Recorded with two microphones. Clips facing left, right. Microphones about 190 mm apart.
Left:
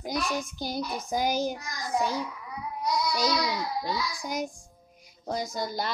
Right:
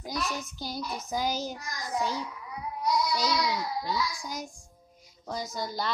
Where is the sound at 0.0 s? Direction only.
15° left (ahead or behind).